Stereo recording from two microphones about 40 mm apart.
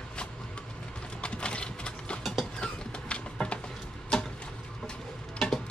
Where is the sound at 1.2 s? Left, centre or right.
Left.